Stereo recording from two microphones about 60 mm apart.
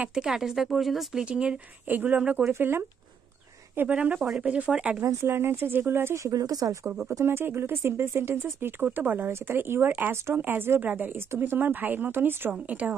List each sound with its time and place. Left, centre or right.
0.1 s speech: centre
1.3 s speech: centre
1.9 s speech: right
3.7 s speech: right
5.0 s speech: right
6.1 s speech: right
6.9 s speech: right